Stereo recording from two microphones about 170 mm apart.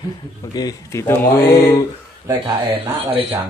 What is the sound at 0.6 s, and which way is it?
Speech, 20° left (ahead or behind).